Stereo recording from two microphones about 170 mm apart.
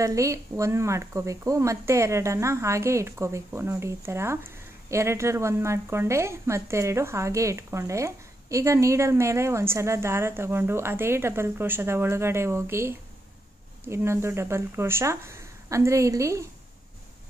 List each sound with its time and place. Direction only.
0.0 s a woman's voice: 20° right (ahead or behind)